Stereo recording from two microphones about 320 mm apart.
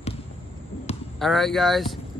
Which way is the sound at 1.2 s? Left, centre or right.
Centre.